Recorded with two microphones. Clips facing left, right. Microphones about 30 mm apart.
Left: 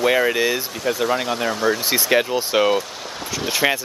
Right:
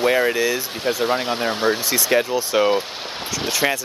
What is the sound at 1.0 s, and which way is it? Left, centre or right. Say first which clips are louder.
Speech: even; right.